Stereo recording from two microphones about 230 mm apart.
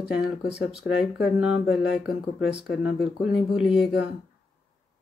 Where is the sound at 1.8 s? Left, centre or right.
Centre.